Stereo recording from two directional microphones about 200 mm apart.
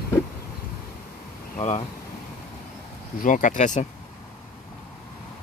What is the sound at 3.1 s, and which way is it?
Speech, 40° left (ahead or behind).